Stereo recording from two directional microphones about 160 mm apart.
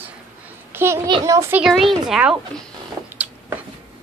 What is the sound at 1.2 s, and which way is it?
Speech, 15° right (ahead or behind).